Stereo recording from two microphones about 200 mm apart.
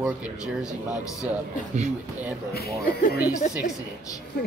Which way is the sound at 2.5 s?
50° left (ahead or behind).